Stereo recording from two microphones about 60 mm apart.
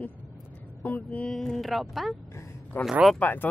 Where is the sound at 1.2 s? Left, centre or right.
Centre.